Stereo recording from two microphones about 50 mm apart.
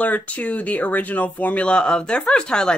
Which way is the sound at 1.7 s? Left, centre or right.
Centre.